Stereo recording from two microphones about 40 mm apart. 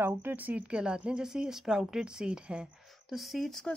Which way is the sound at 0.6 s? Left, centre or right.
Right.